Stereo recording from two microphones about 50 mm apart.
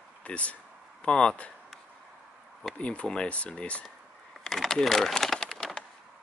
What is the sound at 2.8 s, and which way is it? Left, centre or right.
Speech, left.